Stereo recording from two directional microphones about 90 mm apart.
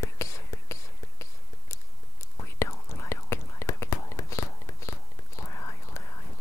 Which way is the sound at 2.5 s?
30° left (ahead or behind).